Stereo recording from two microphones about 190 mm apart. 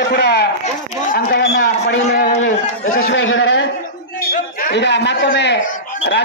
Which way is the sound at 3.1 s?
80° left.